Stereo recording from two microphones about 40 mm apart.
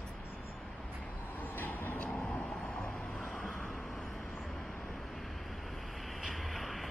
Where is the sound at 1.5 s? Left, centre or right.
Left.